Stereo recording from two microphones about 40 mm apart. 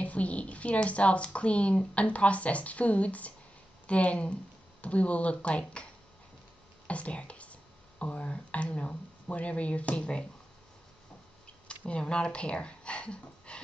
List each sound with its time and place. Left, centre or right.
0.0 s speech: left
6.9 s a sound: left
8.0 s speech: left
11.6 s speech: left